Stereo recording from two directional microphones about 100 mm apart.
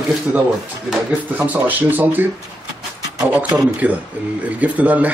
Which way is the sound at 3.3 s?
15° right (ahead or behind).